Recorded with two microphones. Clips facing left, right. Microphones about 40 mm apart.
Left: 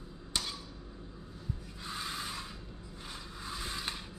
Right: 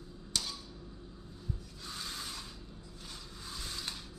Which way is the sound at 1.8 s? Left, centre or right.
Centre.